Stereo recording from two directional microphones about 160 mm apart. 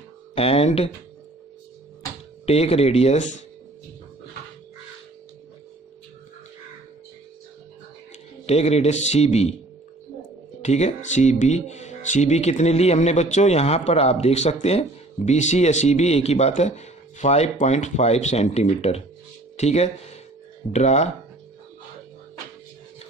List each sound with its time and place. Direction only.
0.3 s speech: 40° left (ahead or behind)
2.4 s speech: 40° left (ahead or behind)
8.5 s speech: 40° left (ahead or behind)
10.6 s speech: 45° left (ahead or behind)